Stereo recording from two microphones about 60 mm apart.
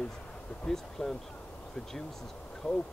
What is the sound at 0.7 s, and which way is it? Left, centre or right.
Speech, centre.